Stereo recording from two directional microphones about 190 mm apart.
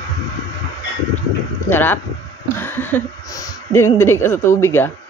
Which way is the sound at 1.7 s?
10° left (ahead or behind).